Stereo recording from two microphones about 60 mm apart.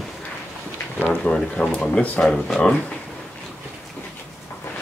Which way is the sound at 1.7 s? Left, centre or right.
Centre.